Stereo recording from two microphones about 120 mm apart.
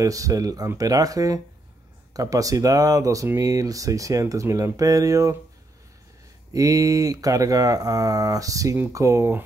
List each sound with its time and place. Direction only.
0.0 s speech: 30° right (ahead or behind)
6.5 s speech: 30° right (ahead or behind)